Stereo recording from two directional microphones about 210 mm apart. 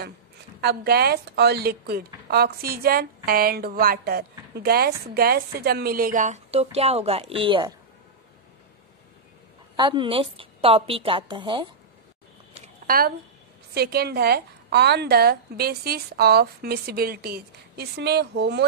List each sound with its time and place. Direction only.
0.6 s a woman's voice: 50° right (ahead or behind); by 7.7 s 25° right (ahead or behind)
9.8 s a woman's voice: 20° right (ahead or behind)
12.5 s a sound: 40° right (ahead or behind)
13.7 s a woman's voice: 50° right (ahead or behind)